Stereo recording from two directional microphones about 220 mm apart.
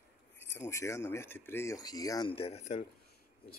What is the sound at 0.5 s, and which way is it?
Speech, 15° left (ahead or behind).